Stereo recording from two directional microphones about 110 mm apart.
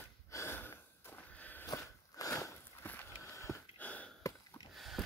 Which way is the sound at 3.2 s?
25° left (ahead or behind).